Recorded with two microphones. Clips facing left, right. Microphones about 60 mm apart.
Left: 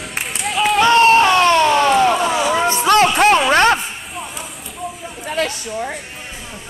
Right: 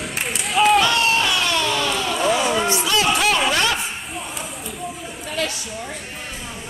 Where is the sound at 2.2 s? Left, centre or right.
Left.